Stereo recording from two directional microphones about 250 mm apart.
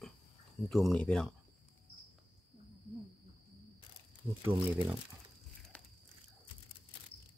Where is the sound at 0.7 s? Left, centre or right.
Centre.